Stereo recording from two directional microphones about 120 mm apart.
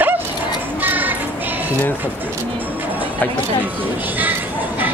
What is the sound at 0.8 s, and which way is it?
Child singing, 15° right (ahead or behind).